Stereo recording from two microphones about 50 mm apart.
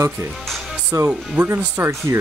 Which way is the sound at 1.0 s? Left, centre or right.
Right.